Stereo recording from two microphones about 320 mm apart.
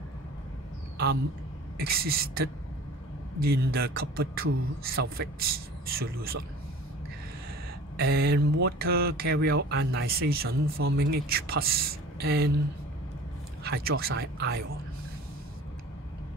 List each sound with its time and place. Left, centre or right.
1.8 s speech: right
8.0 s speech: right
13.7 s speech: right